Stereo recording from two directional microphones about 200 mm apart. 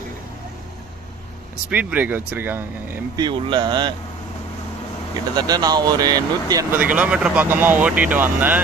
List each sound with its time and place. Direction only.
1.7 s speech: 10° right (ahead or behind)
3.2 s speech: 25° right (ahead or behind)
5.3 s speech: 20° right (ahead or behind)